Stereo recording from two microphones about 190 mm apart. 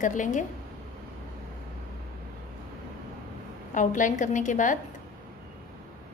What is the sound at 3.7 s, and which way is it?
A woman's voice, 40° left (ahead or behind).